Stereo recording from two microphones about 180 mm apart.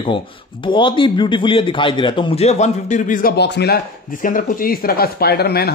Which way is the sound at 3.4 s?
70° left (ahead or behind).